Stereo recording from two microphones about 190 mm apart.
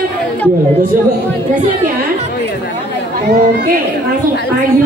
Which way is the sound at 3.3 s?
50° right (ahead or behind).